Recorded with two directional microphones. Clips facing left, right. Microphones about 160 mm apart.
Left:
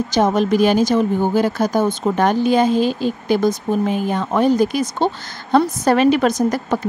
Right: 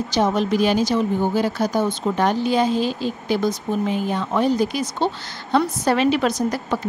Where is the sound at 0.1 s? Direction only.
50° left (ahead or behind).